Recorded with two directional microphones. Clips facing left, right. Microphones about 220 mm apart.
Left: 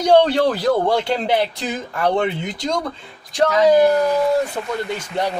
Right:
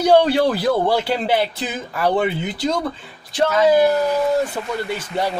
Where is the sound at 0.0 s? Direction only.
5° right (ahead or behind).